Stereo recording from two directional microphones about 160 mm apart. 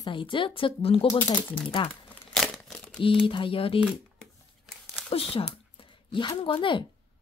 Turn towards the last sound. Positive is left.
turn(degrees=30)  # may be behind; listen again after turning